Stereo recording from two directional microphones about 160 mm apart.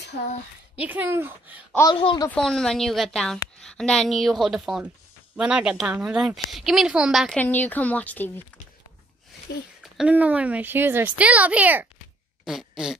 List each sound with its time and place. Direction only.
0.7 s speech: 10° right (ahead or behind)
2.0 s speech: 30° left (ahead or behind)
2.2 s a woman's voice: 5° left (ahead or behind)
9.9 s speech: 10° right (ahead or behind)
12.4 s fart: 5° right (ahead or behind)